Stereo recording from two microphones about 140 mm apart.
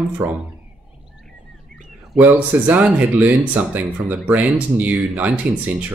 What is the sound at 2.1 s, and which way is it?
Speech, 15° right (ahead or behind).